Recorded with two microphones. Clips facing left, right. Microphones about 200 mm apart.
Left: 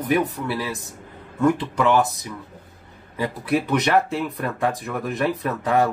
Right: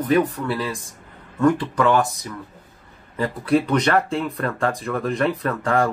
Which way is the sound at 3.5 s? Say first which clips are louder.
Right 2 dB; 5° left (ahead or behind).